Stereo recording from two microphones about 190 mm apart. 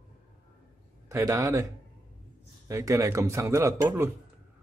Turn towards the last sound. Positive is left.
turn(degrees=-15)  # may be behind; listen again after turning